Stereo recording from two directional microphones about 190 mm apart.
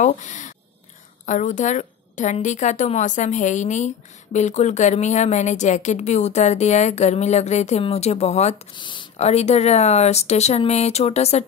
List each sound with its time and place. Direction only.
0.0 s a woman's voice: 40° left (ahead or behind)